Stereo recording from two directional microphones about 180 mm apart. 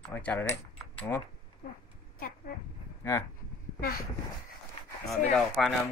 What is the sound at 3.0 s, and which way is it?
Speech, 15° left (ahead or behind).